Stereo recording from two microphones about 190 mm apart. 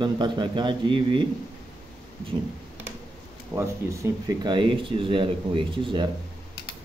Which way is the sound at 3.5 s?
15° right (ahead or behind).